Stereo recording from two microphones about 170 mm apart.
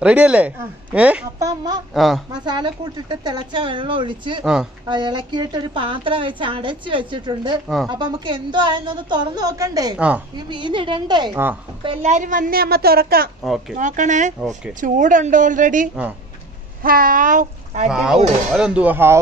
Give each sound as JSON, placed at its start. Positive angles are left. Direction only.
{"t": 0.0, "sound": "speech", "side_deg": -5}
{"t": 1.4, "sound": "a woman's voice", "side_deg": -25}
{"t": 2.0, "sound": "speech", "side_deg": 0}
{"t": 2.3, "sound": "a woman's voice", "side_deg": -25}
{"t": 7.6, "sound": "speech", "side_deg": 0}
{"t": 7.9, "sound": "a woman's voice", "side_deg": -25}
{"t": 9.9, "sound": "speech", "side_deg": -5}
{"t": 10.3, "sound": "a woman's voice", "side_deg": -30}
{"t": 13.4, "sound": "speech", "side_deg": 0}
{"t": 13.7, "sound": "speech", "side_deg": -50}
{"t": 14.4, "sound": "speech", "side_deg": 0}
{"t": 14.7, "sound": "speech", "side_deg": -50}
{"t": 17.8, "sound": "speech", "side_deg": -5}